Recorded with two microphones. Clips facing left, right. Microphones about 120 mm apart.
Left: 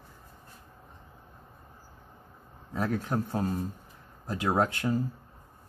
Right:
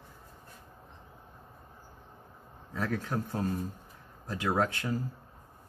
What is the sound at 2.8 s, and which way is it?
A man's voice, 20° left (ahead or behind).